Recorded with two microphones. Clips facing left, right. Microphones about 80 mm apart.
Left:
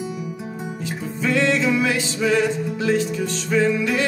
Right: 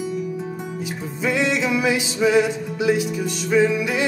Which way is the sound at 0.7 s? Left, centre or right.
Centre.